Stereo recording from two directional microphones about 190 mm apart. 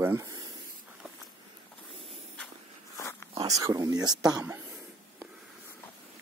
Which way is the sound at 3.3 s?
20° right (ahead or behind).